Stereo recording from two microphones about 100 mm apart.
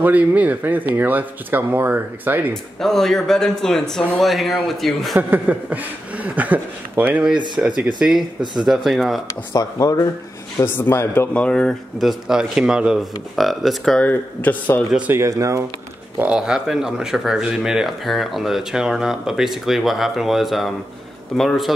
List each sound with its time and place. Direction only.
0.0 s speech: 15° right (ahead or behind)
2.5 s speech: 5° left (ahead or behind)
5.1 s a sound: 15° right (ahead or behind)
7.5 s speech: 5° right (ahead or behind)
9.5 s speech: 35° left (ahead or behind)
10.6 s speech: 25° left (ahead or behind)
11.3 s speech: 10° left (ahead or behind)
12.0 s speech: 5° right (ahead or behind)
13.9 s speech: 15° left (ahead or behind)
15.2 s speech: 30° right (ahead or behind)
16.2 s speech: 10° right (ahead or behind)